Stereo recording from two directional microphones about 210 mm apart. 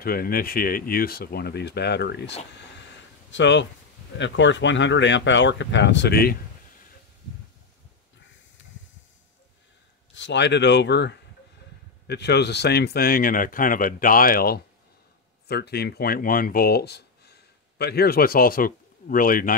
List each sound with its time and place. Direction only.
0.0 s speech: 45° left (ahead or behind)
10.1 s speech: 60° left (ahead or behind); by 19.5 s 40° left (ahead or behind)